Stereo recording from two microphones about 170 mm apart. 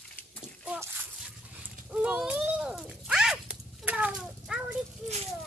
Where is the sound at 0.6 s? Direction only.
10° right (ahead or behind).